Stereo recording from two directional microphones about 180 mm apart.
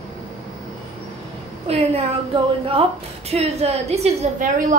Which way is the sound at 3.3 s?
35° right (ahead or behind).